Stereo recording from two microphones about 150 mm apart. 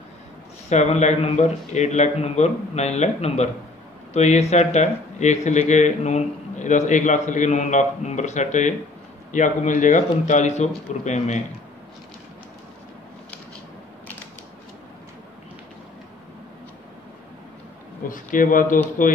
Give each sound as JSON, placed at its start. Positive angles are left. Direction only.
{"t": 0.7, "sound": "a man's voice", "side_deg": 50}
{"t": 18.0, "sound": "speech", "side_deg": 65}